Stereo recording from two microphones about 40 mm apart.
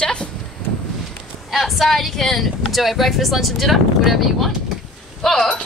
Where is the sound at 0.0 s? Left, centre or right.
Left.